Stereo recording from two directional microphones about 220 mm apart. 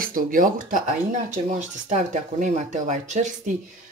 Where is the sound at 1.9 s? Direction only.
35° right (ahead or behind).